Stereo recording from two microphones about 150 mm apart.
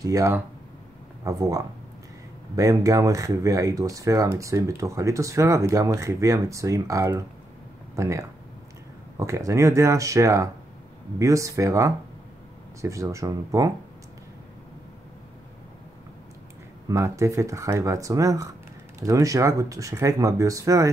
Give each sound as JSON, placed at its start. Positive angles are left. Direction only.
{"t": 0.0, "sound": "speech", "side_deg": -20}
{"t": 16.8, "sound": "speech", "side_deg": -20}